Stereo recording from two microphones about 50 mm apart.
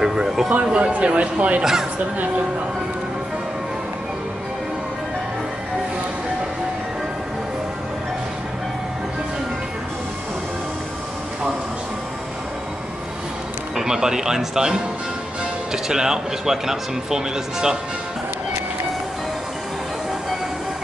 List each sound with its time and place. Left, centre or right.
0.0 s speech: centre
0.5 s speech: right
1.6 s speech: centre
13.7 s speech: centre